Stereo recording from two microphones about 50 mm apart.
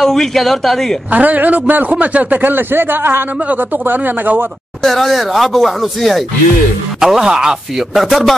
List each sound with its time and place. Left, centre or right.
0.0 s speech: centre
1.1 s a man's voice: right
3.3 s a man's voice: right
4.8 s a man's voice: centre